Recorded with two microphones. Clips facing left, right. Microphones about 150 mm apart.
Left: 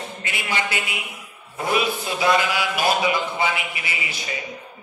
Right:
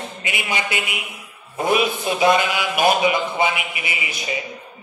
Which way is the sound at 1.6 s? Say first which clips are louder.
Right 3 dB; 20° right (ahead or behind).